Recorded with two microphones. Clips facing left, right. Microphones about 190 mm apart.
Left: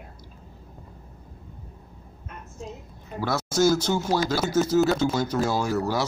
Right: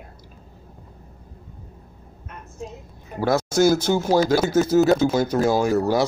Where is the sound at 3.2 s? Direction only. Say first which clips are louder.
Right 4 dB; 50° right (ahead or behind).